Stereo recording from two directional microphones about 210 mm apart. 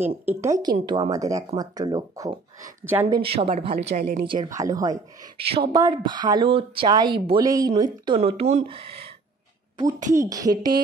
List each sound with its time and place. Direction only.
0.2 s a woman's voice: 10° right (ahead or behind)
3.2 s speech: 25° right (ahead or behind)
4.3 s a woman's voice: 15° right (ahead or behind)
10.1 s speech: 15° right (ahead or behind)